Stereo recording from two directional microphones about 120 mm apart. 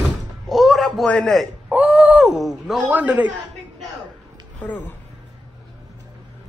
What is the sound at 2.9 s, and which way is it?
Speech, 10° right (ahead or behind).